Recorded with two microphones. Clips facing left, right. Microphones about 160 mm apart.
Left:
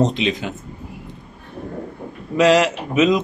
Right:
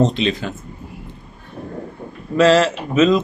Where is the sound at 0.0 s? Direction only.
15° left (ahead or behind).